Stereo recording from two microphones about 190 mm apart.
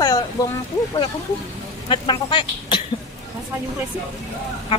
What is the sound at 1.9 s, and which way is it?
Speech, 25° left (ahead or behind).